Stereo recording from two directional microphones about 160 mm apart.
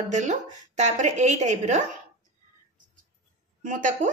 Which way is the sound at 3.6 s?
55° right (ahead or behind).